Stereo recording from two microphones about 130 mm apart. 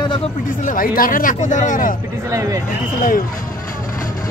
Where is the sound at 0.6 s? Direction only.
90° left.